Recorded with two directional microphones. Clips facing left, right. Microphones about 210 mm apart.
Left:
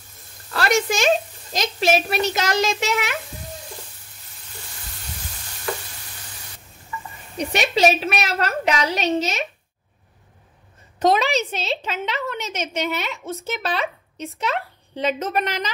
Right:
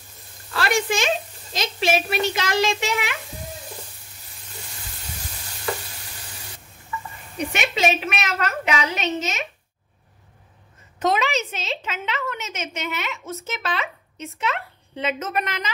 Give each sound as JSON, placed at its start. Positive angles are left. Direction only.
{"t": 0.5, "sound": "a woman's voice", "side_deg": 40}
{"t": 7.3, "sound": "a woman's voice", "side_deg": 35}
{"t": 11.0, "sound": "a woman's voice", "side_deg": 35}